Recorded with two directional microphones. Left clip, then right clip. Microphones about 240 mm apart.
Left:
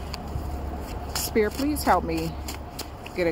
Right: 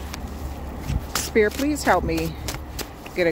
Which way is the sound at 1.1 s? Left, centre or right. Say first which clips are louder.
Right 4 dB; right.